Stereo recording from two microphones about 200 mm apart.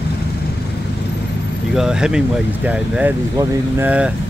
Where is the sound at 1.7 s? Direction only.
5° right (ahead or behind).